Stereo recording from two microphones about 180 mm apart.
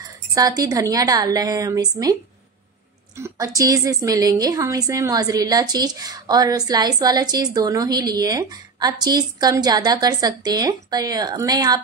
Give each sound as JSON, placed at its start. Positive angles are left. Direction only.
{"t": 0.3, "sound": "a woman's voice", "side_deg": -20}
{"t": 3.2, "sound": "a woman's voice", "side_deg": -15}